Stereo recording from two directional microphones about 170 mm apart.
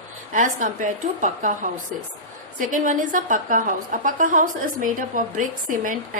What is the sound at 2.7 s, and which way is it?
A woman's voice, 50° right (ahead or behind).